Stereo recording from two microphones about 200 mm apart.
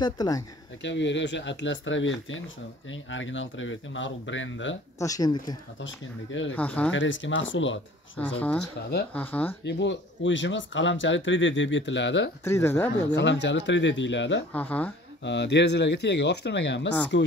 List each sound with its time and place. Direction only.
0.0 s speech: 20° left (ahead or behind)
0.8 s speech: 65° left (ahead or behind)
4.9 s speech: 15° left (ahead or behind)
5.8 s speech: 70° left (ahead or behind)
6.5 s speech: 5° left (ahead or behind)
6.9 s speech: 70° left (ahead or behind)
8.2 s speech: 5° left (ahead or behind)
9.7 s speech: 60° left (ahead or behind)
12.4 s speech: 10° left (ahead or behind)
13.1 s speech: 60° left (ahead or behind)
14.5 s speech: 5° left (ahead or behind)
15.2 s speech: 60° left (ahead or behind)